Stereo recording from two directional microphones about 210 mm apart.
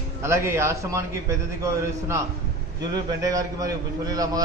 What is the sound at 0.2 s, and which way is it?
A man's voice, 15° right (ahead or behind).